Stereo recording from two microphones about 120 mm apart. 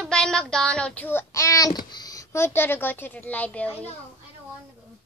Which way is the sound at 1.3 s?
25° left (ahead or behind).